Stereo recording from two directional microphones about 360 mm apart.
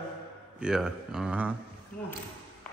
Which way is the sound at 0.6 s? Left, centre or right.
Centre.